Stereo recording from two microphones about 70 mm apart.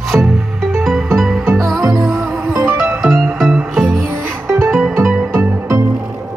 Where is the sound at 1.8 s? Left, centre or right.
Right.